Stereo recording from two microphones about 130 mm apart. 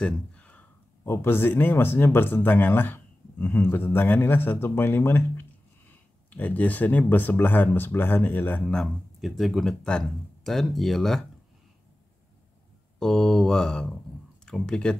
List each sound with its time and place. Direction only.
0.0 s speech: 10° left (ahead or behind)
13.0 s speech: 5° left (ahead or behind)